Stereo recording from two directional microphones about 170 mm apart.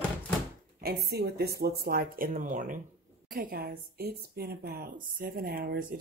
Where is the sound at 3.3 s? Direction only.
60° right (ahead or behind).